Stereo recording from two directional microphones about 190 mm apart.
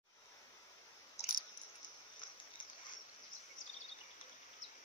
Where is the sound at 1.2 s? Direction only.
60° left (ahead or behind).